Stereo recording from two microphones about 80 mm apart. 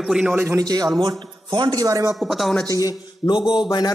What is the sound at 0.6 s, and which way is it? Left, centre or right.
A man's voice, right.